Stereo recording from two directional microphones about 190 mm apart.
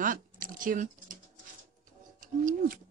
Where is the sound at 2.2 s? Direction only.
45° right (ahead or behind).